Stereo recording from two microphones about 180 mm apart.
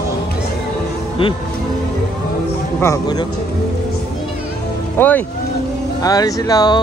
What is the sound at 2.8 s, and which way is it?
Speech, 20° left (ahead or behind).